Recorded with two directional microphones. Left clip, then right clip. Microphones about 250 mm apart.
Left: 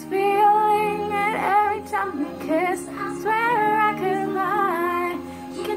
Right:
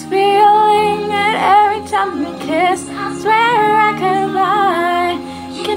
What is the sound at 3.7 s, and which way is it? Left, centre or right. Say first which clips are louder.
Humming: right 8 dB; centre.